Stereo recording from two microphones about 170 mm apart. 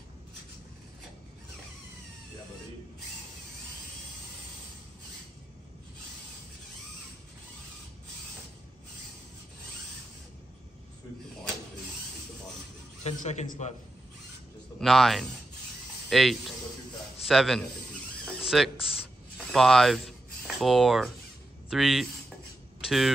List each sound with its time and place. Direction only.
13.0 s a man's voice: 40° left (ahead or behind)
14.8 s a man's voice: centre (ahead or behind)
19.3 s a sound: centre (ahead or behind)
21.6 s speech: centre (ahead or behind)